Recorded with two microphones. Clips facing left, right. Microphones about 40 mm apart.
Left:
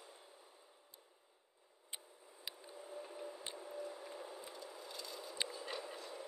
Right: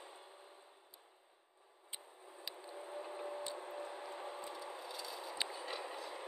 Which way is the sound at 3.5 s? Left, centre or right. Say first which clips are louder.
Right 1 dB; right.